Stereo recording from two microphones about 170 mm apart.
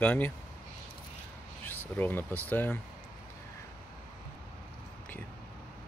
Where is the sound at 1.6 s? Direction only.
10° left (ahead or behind).